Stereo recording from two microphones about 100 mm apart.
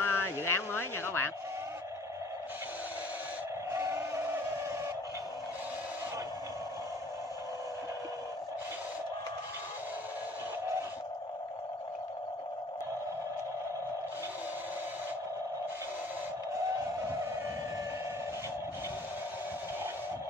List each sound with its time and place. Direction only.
0.0 s vehicle: 25° left (ahead or behind)
0.5 s speech: 25° left (ahead or behind)
3.7 s a sound: 30° right (ahead or behind)